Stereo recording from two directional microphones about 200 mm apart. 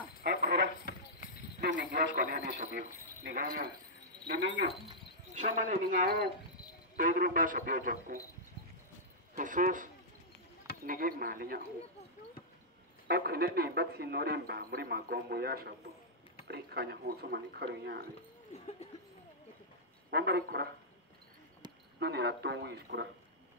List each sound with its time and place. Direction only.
0.2 s a sound: 50° right (ahead or behind)
1.2 s clip-clop: 40° left (ahead or behind)
1.6 s speech: 45° right (ahead or behind)
4.3 s speech: 60° right (ahead or behind)
5.7 s speech: 45° right (ahead or behind)
9.3 s speech: 40° right (ahead or behind)
10.9 s speech: 45° right (ahead or behind)
13.1 s speech: 50° right (ahead or behind)
18.5 s speech: 35° left (ahead or behind)
20.1 s speech: 55° right (ahead or behind)
22.0 s speech: 55° right (ahead or behind)